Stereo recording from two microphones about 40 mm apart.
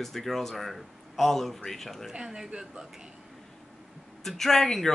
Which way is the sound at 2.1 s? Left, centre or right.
Centre.